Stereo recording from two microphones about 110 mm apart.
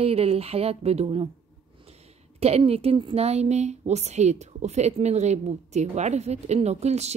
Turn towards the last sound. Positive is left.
turn(degrees=-80)